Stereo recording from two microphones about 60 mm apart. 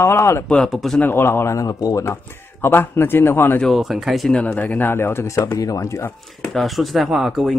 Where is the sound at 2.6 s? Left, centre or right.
Left.